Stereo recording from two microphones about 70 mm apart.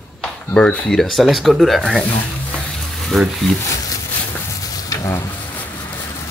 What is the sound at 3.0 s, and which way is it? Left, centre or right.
Speech, centre.